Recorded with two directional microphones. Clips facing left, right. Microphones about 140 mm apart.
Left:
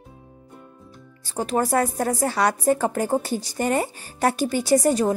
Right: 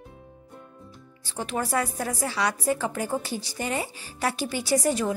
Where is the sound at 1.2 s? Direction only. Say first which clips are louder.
Left 6 dB; 45° left (ahead or behind).